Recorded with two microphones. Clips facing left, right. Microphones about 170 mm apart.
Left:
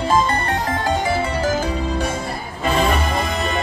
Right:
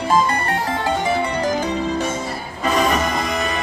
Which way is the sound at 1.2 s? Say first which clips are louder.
Even; 5° left (ahead or behind).